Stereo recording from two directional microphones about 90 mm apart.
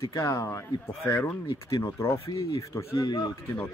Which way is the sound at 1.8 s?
35° left (ahead or behind).